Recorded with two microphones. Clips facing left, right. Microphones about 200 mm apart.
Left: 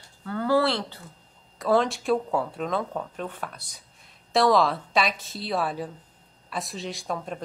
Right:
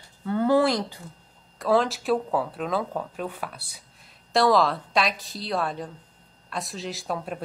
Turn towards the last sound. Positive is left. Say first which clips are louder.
# right 1 dB
turn(degrees=-5)  # may be behind; listen again after turning